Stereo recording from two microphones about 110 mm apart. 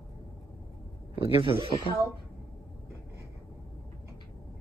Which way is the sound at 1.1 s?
55° right (ahead or behind).